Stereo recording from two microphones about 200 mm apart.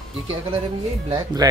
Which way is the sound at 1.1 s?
20° right (ahead or behind).